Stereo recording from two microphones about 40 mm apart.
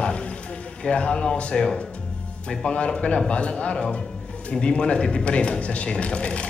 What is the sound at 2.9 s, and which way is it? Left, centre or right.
A man's voice, left.